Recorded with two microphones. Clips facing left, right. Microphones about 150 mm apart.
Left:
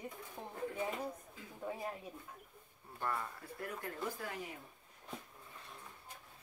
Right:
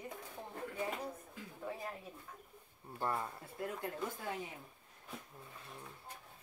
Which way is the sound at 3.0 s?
25° right (ahead or behind).